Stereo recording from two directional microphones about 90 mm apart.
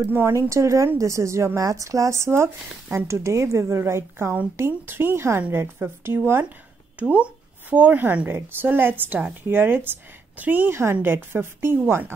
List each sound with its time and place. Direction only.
0.0 s a woman's voice: 25° right (ahead or behind)
7.0 s a woman's voice: 15° right (ahead or behind)